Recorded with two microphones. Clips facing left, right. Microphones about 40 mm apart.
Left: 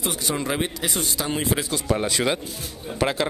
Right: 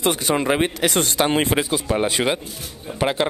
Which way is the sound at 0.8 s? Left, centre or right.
Right.